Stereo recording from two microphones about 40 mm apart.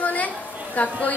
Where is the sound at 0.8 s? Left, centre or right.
Left.